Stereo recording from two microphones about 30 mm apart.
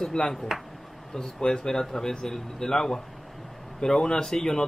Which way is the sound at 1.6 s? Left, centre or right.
Centre.